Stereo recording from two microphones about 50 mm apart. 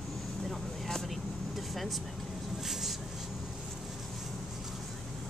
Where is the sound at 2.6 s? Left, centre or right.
Centre.